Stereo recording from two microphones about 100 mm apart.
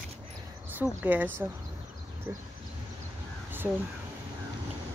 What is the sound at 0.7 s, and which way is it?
Speech, 20° right (ahead or behind).